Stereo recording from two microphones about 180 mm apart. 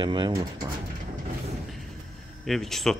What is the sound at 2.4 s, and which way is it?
Speech, centre (ahead or behind).